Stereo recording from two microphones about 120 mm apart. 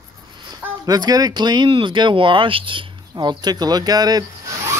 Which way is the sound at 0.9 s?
35° right (ahead or behind).